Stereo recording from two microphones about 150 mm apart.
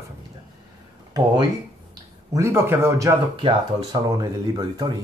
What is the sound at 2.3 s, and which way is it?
Speech, 20° right (ahead or behind).